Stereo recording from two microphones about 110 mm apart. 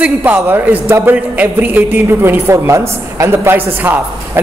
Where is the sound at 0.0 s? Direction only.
15° right (ahead or behind).